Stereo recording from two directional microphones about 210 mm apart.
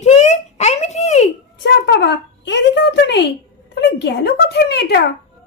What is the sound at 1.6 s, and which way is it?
Speech, 55° left (ahead or behind).